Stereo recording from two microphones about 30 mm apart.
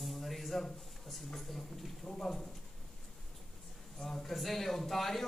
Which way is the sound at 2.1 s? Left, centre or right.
Left.